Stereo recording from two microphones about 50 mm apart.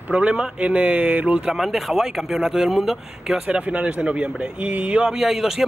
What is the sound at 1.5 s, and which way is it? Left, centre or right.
Speech, centre.